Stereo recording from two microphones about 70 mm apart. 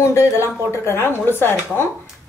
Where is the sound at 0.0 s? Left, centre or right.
Left.